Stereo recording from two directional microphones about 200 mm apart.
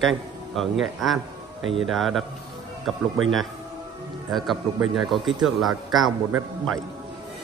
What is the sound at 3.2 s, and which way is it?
Speech, 85° right.